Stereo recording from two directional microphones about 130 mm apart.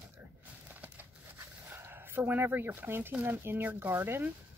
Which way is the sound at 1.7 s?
15° right (ahead or behind).